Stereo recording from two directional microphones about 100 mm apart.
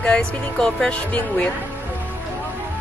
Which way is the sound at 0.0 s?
10° left (ahead or behind).